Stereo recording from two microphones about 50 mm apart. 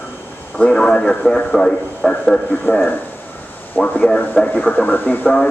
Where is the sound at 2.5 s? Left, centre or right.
Left.